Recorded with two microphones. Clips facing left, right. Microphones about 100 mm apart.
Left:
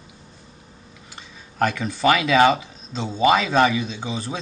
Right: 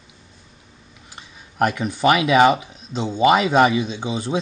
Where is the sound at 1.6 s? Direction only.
15° right (ahead or behind).